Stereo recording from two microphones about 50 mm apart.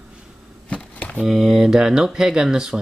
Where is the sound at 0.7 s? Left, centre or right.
Left.